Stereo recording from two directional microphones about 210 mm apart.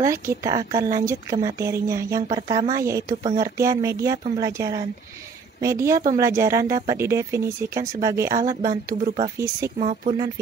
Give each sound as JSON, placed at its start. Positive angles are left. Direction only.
{"t": 0.0, "sound": "speech", "side_deg": -15}
{"t": 9.8, "sound": "speech", "side_deg": -30}